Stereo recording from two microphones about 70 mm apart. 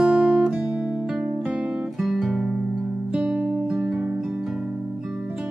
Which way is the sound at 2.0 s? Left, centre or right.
Centre.